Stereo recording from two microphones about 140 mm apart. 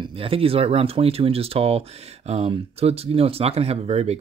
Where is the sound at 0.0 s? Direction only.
40° right (ahead or behind).